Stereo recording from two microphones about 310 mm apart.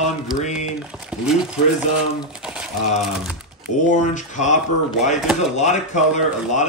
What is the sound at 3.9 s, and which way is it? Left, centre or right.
Speech, left.